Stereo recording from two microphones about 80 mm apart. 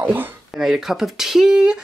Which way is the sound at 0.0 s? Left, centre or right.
Right.